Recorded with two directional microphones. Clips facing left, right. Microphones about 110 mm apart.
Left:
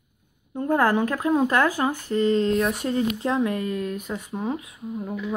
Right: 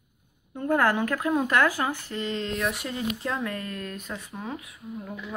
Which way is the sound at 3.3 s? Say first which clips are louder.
Left 7 dB; 15° left (ahead or behind).